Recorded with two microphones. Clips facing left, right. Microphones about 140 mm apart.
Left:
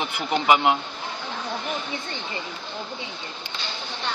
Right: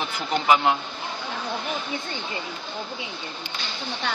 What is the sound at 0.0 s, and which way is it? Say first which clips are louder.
Speech: left 1 dB; 15° left (ahead or behind).